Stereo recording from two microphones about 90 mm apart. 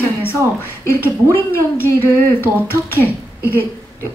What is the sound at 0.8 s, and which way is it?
Speech, 25° left (ahead or behind).